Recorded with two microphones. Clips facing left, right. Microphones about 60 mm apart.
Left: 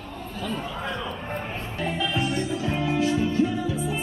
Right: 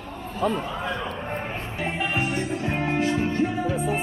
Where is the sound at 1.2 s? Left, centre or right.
Right.